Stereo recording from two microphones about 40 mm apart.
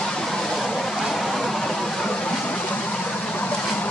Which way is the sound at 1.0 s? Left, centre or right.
Centre.